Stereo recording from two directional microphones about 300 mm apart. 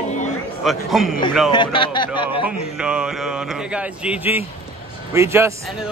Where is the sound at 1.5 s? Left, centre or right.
Centre.